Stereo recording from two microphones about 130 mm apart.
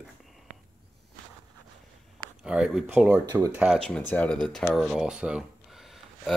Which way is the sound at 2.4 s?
5° right (ahead or behind).